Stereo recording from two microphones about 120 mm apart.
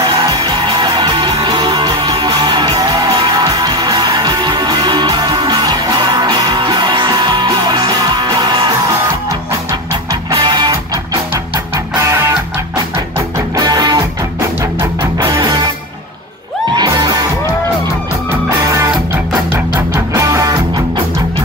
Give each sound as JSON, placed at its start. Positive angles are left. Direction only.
{"t": 0.3, "sound": "music", "side_deg": -40}
{"t": 10.3, "sound": "music", "side_deg": -35}
{"t": 12.0, "sound": "music", "side_deg": -25}
{"t": 13.6, "sound": "music", "side_deg": -35}
{"t": 16.7, "sound": "music", "side_deg": -30}
{"t": 20.2, "sound": "music", "side_deg": -30}